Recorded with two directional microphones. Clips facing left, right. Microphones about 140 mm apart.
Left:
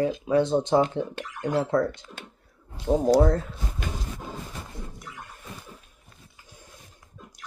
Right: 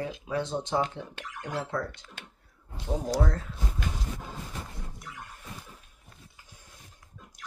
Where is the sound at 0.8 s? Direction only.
40° left (ahead or behind).